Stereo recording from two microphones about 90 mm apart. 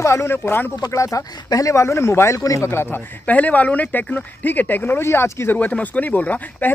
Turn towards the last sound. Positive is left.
turn(degrees=20)  # may be behind; listen again after turning